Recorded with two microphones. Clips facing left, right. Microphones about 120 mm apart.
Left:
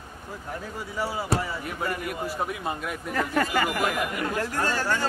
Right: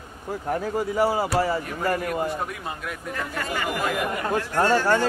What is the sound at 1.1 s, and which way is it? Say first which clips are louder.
Speech: right 6 dB; 45° right (ahead or behind).